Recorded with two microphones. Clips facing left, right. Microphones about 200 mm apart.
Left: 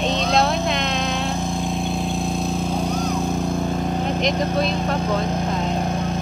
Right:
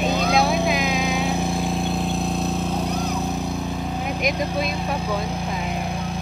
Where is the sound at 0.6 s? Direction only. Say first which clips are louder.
Right 1 dB; centre (ahead or behind).